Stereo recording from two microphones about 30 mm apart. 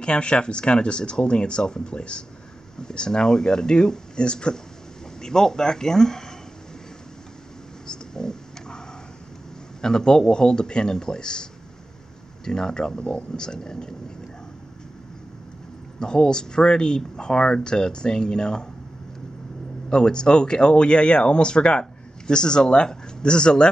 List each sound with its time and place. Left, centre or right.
0.0 s speech: left
5.2 s speech: left
7.8 s a sound: left
9.8 s speech: left
12.4 s speech: left
16.0 s speech: left
19.9 s speech: left